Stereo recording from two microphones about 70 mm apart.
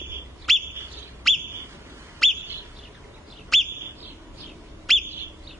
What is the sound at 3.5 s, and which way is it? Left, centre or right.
Bird, centre.